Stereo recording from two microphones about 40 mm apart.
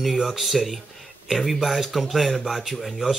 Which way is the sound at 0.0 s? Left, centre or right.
Centre.